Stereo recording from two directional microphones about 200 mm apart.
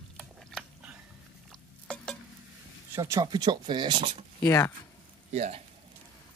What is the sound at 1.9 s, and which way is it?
Stir, 5° left (ahead or behind).